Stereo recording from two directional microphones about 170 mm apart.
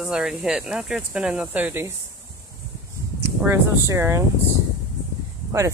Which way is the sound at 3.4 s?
15° right (ahead or behind).